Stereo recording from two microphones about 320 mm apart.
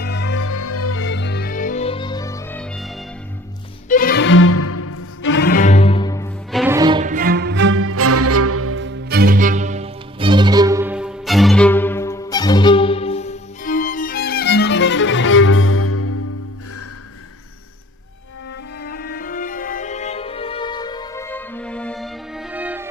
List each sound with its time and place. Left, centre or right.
0.0 s music: left; by 2.9 s centre
3.9 s music: left; by 6.6 s centre
6.6 s music: centre; by 16.2 s left
18.8 s music: left; by 22.8 s centre